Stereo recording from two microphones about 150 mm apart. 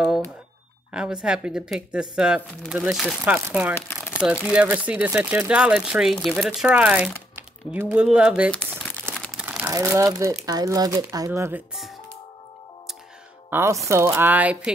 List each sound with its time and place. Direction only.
0.9 s speech: 5° right (ahead or behind)
8.5 s crumpling: 5° left (ahead or behind)
9.4 s crumpling: 10° right (ahead or behind)
9.7 s speech: 20° right (ahead or behind)
13.5 s speech: 15° right (ahead or behind)